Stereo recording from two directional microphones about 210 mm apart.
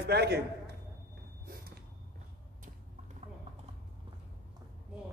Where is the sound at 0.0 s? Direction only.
50° right (ahead or behind).